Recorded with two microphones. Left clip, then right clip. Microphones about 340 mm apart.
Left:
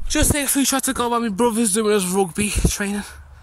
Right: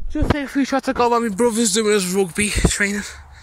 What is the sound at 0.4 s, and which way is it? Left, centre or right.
Speech, centre.